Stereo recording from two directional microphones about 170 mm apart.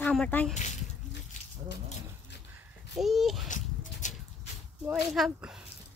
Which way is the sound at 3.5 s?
50° left (ahead or behind).